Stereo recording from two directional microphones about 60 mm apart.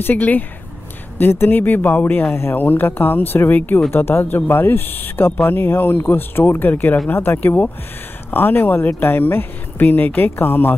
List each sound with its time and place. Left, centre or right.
0.0 s speech: left